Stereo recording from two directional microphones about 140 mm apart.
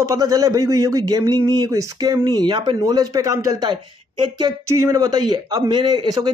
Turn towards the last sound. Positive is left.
turn(degrees=-30)  # may be behind; listen again after turning